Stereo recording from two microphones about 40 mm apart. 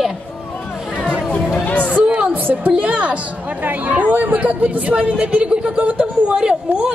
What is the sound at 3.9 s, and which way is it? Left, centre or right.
Speech, right.